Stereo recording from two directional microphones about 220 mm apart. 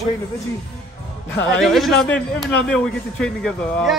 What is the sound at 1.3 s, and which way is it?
A man's voice, 5° left (ahead or behind).